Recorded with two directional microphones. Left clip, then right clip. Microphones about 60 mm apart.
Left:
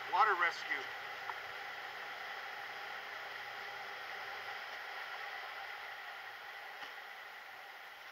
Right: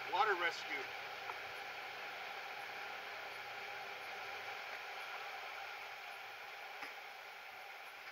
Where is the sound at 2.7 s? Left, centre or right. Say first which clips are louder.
Left 2 dB; left.